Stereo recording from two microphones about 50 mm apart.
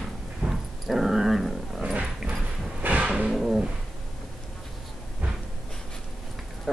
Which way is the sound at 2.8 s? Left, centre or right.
Right.